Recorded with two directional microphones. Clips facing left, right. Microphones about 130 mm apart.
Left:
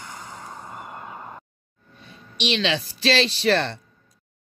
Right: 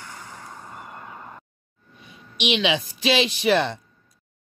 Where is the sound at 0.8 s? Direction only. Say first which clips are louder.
Left 2 dB; 10° left (ahead or behind).